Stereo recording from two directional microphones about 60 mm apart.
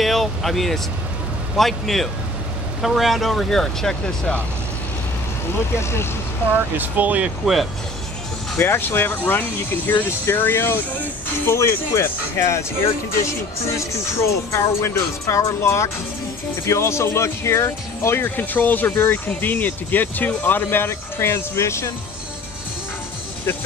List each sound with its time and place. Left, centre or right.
0.0 s vehicle: centre
1.6 s speech: centre
5.8 s speech: left
6.5 s speech: right
8.5 s speech: left
13.7 s speech: left
18.2 s speech: left